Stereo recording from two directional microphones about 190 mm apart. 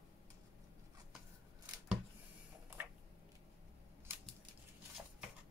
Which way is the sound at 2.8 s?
10° right (ahead or behind).